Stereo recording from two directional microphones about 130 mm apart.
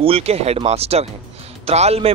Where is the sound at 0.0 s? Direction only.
50° right (ahead or behind).